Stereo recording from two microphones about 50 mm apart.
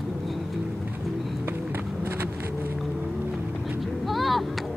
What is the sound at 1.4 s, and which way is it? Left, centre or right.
Run, right.